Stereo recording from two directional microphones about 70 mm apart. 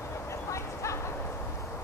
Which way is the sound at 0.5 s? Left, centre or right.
Left.